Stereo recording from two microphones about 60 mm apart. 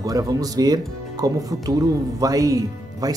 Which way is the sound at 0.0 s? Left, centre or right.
Right.